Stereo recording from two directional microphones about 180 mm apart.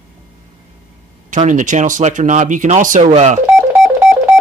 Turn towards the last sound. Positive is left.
turn(degrees=-5)  # may be behind; listen again after turning